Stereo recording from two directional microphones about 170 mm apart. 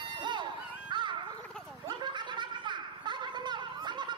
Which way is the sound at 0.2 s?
25° right (ahead or behind).